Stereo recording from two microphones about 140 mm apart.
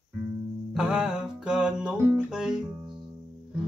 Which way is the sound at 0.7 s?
5° right (ahead or behind).